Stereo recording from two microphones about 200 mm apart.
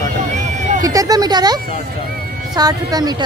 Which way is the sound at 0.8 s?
15° right (ahead or behind).